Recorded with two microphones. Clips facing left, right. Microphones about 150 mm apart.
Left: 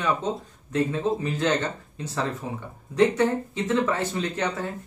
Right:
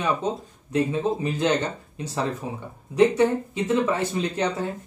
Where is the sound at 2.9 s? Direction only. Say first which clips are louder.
Right 2 dB; 15° right (ahead or behind).